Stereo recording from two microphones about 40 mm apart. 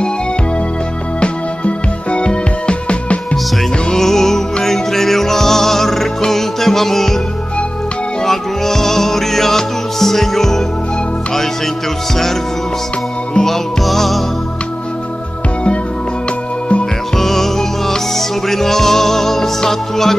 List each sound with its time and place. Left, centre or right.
1.2 s music: left
3.9 s music: centre
8.3 s music: centre
13.3 s music: centre
13.8 s music: centre
17.2 s music: centre